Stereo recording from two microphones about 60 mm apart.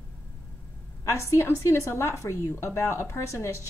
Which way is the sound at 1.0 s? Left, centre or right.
Left.